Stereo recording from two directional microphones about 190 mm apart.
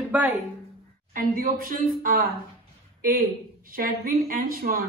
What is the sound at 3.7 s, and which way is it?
A woman's voice, 50° right (ahead or behind).